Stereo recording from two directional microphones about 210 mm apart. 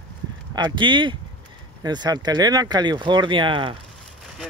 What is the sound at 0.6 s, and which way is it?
Speech, 20° right (ahead or behind).